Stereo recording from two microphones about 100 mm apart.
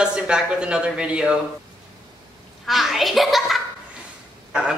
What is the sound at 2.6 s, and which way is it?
A child's voice, centre (ahead or behind).